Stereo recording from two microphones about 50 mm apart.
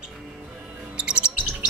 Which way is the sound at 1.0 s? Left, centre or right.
Centre.